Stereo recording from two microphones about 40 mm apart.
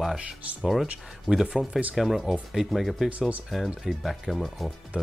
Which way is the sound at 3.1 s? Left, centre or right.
Right.